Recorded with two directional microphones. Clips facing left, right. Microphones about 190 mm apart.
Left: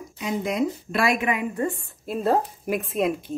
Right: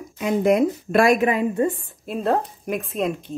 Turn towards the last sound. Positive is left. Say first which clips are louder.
# even
turn(degrees=5)  # may be behind; listen again after turning